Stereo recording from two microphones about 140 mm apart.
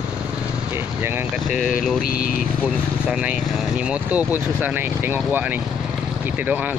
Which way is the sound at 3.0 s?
10° right (ahead or behind).